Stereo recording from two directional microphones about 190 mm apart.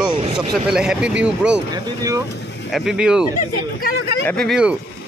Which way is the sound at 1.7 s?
20° right (ahead or behind).